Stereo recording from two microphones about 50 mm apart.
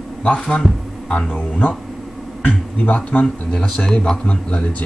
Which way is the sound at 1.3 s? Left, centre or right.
Left.